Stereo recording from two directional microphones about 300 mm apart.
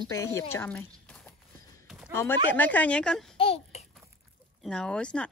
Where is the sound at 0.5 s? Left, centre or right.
Centre.